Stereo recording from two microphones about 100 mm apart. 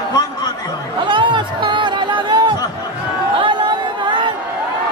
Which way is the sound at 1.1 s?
55° right (ahead or behind).